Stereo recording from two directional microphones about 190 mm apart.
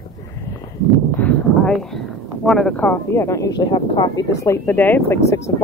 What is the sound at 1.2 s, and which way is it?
Speech, 5° left (ahead or behind).